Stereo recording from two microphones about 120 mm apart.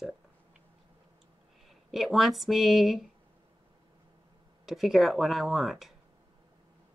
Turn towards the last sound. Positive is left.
turn(degrees=0)  # may be behind; listen again after turning